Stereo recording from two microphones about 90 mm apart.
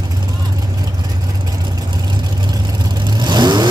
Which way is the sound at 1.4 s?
45° right (ahead or behind).